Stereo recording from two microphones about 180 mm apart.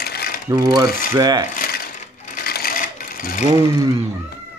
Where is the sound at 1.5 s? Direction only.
50° left (ahead or behind).